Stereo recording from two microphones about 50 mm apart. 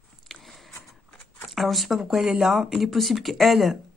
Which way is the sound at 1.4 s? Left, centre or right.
Centre.